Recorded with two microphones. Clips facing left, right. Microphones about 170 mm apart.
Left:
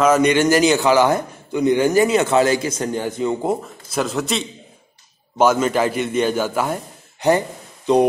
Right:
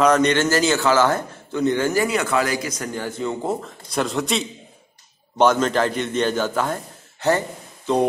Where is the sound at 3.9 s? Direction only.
Centre (ahead or behind).